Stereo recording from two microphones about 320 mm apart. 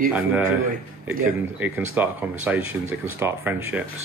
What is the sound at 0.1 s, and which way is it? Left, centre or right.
Speech, centre.